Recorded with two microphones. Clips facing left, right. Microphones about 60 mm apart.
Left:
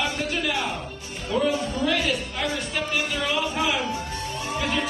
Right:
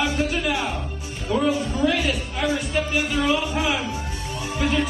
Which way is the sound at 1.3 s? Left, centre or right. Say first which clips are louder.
Right 2 dB; centre.